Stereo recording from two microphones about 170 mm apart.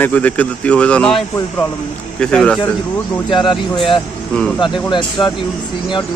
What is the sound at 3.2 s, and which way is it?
Speech, 25° left (ahead or behind).